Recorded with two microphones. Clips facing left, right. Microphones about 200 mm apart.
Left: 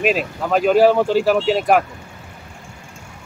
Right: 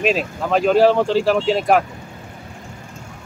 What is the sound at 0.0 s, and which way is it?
Speech, 5° left (ahead or behind).